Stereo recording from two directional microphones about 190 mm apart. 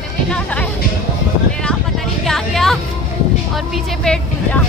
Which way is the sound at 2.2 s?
Centre (ahead or behind).